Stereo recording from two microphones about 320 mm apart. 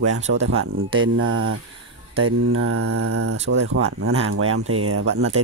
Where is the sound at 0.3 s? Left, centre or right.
Right.